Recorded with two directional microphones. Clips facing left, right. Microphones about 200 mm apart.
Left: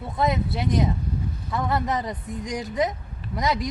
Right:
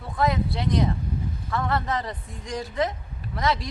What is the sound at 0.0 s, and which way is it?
Speech, 20° left (ahead or behind).